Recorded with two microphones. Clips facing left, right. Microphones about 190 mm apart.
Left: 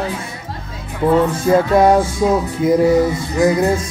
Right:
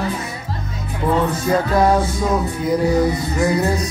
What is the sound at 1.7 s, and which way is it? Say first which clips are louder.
Speech: left 4 dB; 25° left (ahead or behind).